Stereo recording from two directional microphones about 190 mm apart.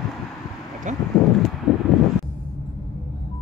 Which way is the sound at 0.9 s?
40° right (ahead or behind).